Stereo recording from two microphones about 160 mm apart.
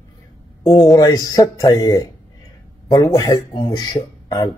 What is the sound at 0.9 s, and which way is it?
Speech, 25° left (ahead or behind).